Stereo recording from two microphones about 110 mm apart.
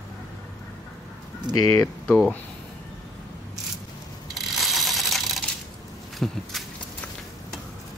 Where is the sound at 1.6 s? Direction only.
30° left (ahead or behind).